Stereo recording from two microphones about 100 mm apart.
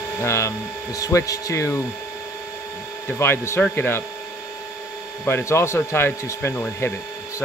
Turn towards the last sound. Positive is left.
turn(degrees=25)  # may be behind; listen again after turning